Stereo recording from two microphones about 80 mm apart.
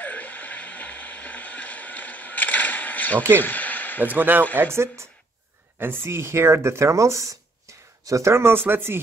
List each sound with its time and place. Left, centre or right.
0.0 s a sound: centre
4.0 s speech: right
5.8 s speech: right